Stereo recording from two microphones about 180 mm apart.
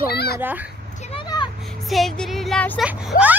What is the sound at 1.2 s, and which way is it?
Vehicle, 25° left (ahead or behind).